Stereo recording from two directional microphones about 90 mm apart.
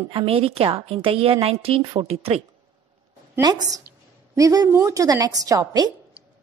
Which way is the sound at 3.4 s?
50° right (ahead or behind).